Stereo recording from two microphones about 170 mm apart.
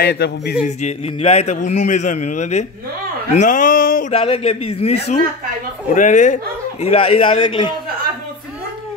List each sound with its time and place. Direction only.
0.0 s speech: 70° left (ahead or behind)
0.7 s a man's voice: 40° left (ahead or behind)
4.1 s a man's voice: 35° left (ahead or behind)
5.9 s a man's voice: 50° left (ahead or behind); by 7.7 s 30° left (ahead or behind)